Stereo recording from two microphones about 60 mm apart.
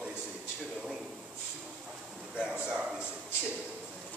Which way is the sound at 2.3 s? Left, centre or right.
Centre.